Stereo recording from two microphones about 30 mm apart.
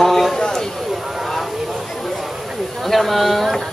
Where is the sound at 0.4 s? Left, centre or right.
Centre.